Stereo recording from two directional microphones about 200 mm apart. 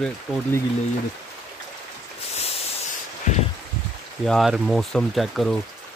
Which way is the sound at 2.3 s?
30° left (ahead or behind).